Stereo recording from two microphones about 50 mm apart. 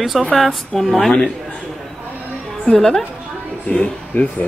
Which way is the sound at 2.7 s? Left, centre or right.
Centre.